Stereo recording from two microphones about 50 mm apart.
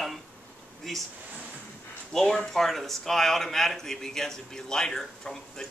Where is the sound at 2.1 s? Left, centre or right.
Centre.